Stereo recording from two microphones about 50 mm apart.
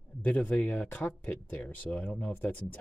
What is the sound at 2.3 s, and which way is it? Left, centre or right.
Speech, left.